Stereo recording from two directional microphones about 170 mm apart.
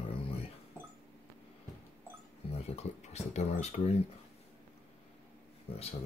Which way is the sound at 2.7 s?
40° left (ahead or behind).